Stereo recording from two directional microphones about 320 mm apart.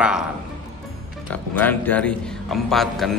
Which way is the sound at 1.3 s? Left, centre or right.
Centre.